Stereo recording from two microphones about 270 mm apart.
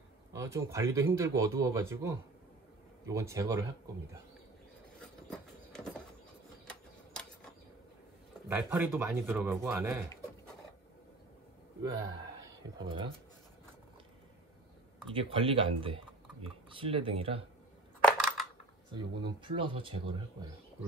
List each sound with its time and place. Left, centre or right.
0.3 s speech: centre
5.7 s bird: centre
8.5 s speech: centre
11.9 s speech: centre
15.0 s speech: centre
18.0 s coin: centre
18.9 s speech: centre